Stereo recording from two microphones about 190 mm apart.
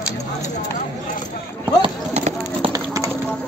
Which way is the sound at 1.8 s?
35° right (ahead or behind).